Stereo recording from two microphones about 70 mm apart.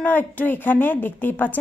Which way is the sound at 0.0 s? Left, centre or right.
Left.